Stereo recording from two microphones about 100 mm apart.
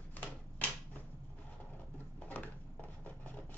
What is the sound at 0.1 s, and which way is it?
Typewriter, 20° left (ahead or behind).